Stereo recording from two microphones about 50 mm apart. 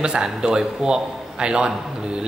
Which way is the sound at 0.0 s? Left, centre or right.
Centre.